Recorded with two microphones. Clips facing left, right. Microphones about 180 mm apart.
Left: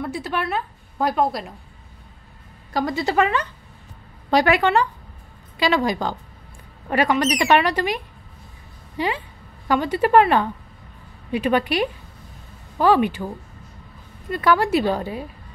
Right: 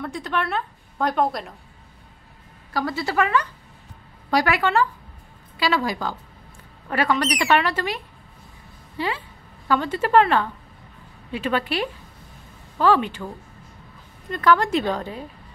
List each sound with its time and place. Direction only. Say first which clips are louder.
0.0 s a woman's voice: left 1 dB; 5° left (ahead or behind)
2.7 s a woman's voice: left 3 dB; 20° left (ahead or behind)
14.3 s speech: left 1 dB; 10° left (ahead or behind)